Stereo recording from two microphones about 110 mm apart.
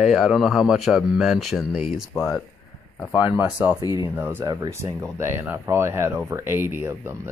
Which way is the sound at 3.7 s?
40° left (ahead or behind).